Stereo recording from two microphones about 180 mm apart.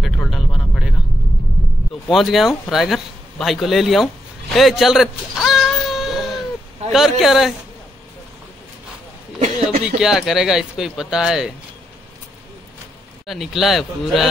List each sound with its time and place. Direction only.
0.0 s vehicle: centre (ahead or behind)
2.0 s speech: centre (ahead or behind)
4.6 s a sound: centre (ahead or behind)
6.9 s speech: centre (ahead or behind)
9.4 s a sound: 35° right (ahead or behind)
9.9 s speech: 5° right (ahead or behind)
13.3 s speech: centre (ahead or behind)